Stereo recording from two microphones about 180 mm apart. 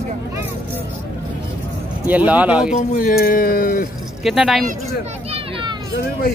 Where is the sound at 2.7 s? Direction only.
50° left (ahead or behind).